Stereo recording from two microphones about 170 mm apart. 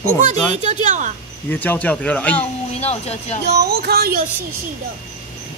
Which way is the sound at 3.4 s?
70° right (ahead or behind).